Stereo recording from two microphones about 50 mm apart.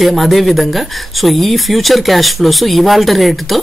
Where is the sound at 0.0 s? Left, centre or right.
Centre.